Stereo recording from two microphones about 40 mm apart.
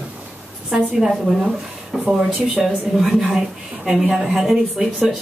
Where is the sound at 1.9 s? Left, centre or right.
Centre.